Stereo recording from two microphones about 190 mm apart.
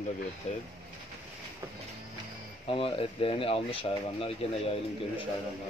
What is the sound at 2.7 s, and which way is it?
Speech, 30° left (ahead or behind).